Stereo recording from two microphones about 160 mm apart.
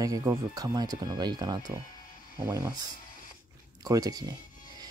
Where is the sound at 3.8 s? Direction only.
20° right (ahead or behind).